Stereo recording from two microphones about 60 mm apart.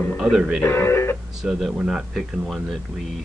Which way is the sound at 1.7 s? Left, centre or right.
Centre.